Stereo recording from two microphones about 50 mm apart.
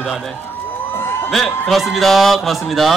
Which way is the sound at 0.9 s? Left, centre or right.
Left.